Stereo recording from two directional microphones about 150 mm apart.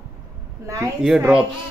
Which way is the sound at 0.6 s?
20° right (ahead or behind).